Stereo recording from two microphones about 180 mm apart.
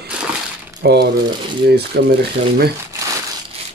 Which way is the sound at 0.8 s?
60° right (ahead or behind).